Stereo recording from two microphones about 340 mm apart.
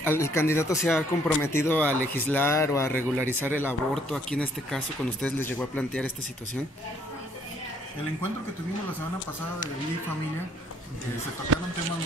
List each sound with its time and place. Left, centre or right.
0.0 s speech: centre